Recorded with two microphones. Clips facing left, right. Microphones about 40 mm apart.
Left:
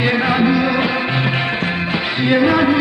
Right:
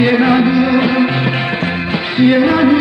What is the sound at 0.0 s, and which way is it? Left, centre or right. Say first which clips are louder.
Music: right 5 dB; centre.